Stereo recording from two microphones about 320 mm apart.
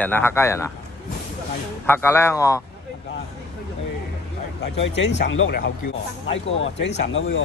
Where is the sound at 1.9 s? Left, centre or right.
Centre.